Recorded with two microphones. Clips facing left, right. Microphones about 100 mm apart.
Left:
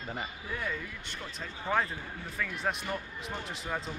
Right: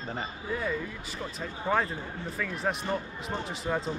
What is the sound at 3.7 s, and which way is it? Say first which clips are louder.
Speech: right 6 dB; 10° right (ahead or behind).